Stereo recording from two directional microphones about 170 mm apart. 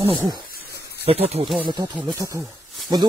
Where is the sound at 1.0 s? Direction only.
35° right (ahead or behind).